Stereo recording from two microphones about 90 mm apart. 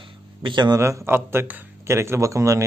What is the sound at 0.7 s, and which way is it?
Speech, 35° right (ahead or behind).